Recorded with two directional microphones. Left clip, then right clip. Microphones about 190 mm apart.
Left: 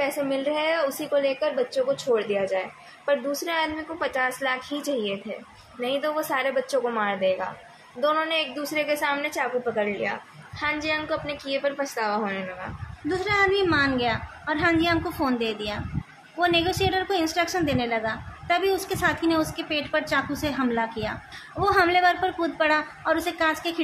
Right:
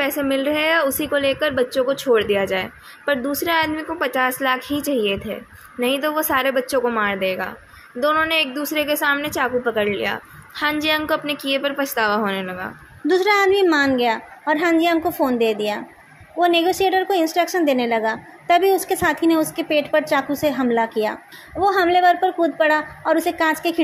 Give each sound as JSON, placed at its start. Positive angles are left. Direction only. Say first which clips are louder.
{"t": 0.0, "sound": "a woman's voice", "louder": "right 5 dB", "side_deg": -40}
{"t": 21.5, "sound": "a woman's voice", "louder": "right 4 dB", "side_deg": -20}